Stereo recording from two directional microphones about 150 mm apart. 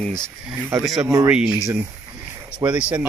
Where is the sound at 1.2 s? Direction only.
5° right (ahead or behind).